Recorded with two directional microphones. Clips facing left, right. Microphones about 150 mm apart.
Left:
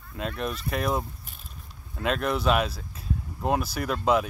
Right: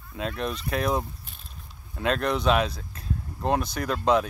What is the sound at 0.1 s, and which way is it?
Speech, centre (ahead or behind).